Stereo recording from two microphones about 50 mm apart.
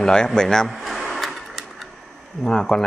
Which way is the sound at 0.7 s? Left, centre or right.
Centre.